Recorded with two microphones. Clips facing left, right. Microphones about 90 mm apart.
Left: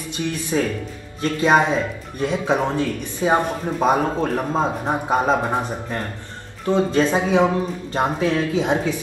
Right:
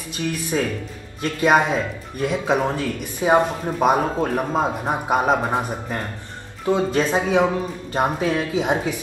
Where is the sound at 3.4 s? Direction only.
10° right (ahead or behind).